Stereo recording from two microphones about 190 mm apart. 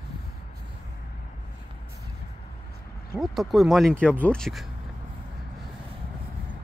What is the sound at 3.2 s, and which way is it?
Speech, centre (ahead or behind).